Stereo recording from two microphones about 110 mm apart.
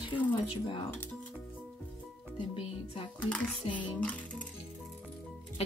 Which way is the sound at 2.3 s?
55° left (ahead or behind).